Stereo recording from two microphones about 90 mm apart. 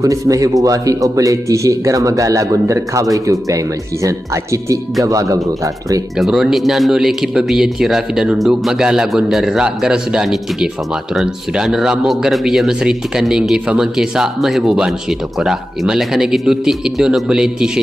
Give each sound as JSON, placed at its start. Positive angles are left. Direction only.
{"t": 0.0, "sound": "speech", "side_deg": -40}
{"t": 6.1, "sound": "a man's voice", "side_deg": -5}